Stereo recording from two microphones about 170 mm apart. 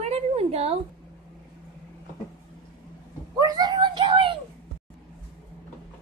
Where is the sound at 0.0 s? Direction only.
35° right (ahead or behind).